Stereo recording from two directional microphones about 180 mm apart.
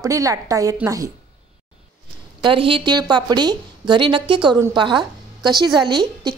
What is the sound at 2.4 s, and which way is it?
A woman's voice, 30° right (ahead or behind).